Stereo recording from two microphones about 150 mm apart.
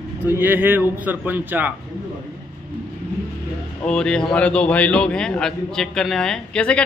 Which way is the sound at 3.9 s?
5° left (ahead or behind).